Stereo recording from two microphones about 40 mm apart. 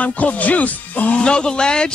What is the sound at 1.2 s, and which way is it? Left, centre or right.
Speech, left.